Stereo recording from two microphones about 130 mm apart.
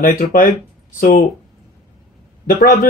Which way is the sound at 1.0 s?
90° left.